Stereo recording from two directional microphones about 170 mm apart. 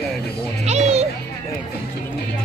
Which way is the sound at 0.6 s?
40° right (ahead or behind).